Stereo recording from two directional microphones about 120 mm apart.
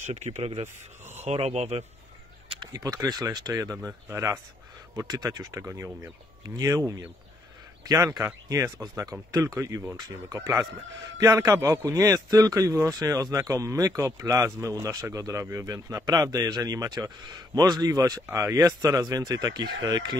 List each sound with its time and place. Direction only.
0.0 s speech: 70° right (ahead or behind)
2.6 s a man's voice: 30° right (ahead or behind)